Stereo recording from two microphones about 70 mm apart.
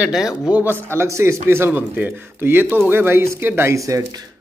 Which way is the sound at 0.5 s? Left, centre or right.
Right.